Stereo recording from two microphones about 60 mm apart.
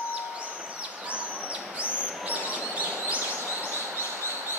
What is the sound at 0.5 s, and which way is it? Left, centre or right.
Bird, centre.